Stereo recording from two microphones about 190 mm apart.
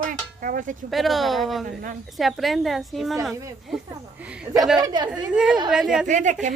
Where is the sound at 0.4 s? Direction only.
45° right (ahead or behind).